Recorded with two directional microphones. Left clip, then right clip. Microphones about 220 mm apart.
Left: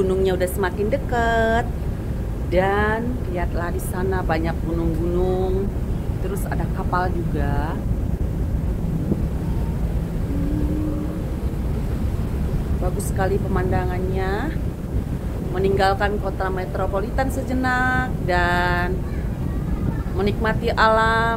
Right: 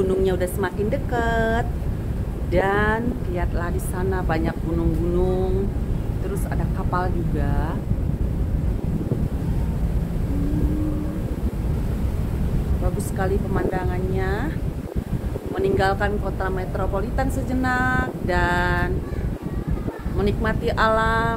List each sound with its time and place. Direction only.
0.2 s a woman's voice: 5° right (ahead or behind)
6.9 s a woman's voice: 5° right (ahead or behind)
13.2 s a woman's voice: 5° right (ahead or behind)
15.5 s speech: 10° right (ahead or behind)
20.2 s a woman's voice: 5° right (ahead or behind)